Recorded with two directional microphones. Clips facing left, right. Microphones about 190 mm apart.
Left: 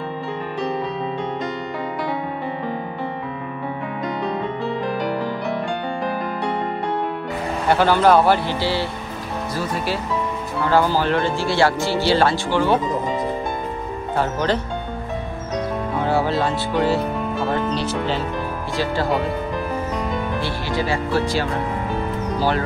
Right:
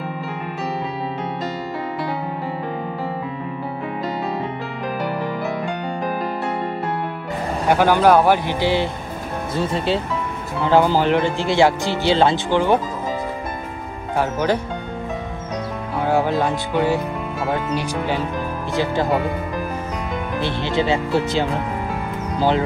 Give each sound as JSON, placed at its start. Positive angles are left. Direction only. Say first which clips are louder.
{"t": 7.7, "sound": "speech", "louder": "right 1 dB", "side_deg": -10}
{"t": 14.1, "sound": "speech", "louder": "right 1 dB", "side_deg": -10}
{"t": 16.0, "sound": "speech", "louder": "right 2 dB", "side_deg": -15}
{"t": 20.3, "sound": "speech", "louder": "right 3 dB", "side_deg": -20}